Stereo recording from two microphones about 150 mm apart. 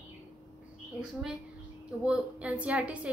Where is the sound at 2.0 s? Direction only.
10° right (ahead or behind).